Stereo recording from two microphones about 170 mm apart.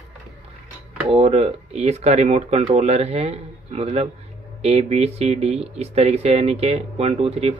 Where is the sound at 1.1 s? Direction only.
35° right (ahead or behind).